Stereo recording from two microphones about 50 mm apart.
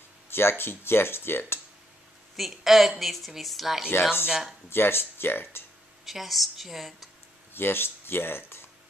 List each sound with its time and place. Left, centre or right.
0.3 s speech: left
2.3 s a woman's voice: centre
4.6 s speech: left
6.0 s a woman's voice: centre
7.5 s speech: left